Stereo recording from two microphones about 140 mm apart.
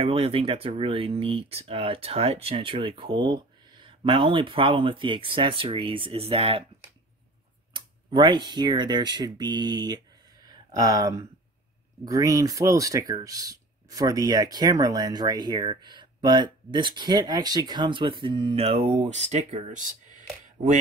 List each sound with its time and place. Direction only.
0.0 s speech: 40° right (ahead or behind)
7.7 s speech: 35° right (ahead or behind); by 20.8 s 65° right (ahead or behind)